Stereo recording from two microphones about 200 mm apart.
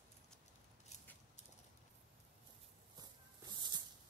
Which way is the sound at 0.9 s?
35° left (ahead or behind).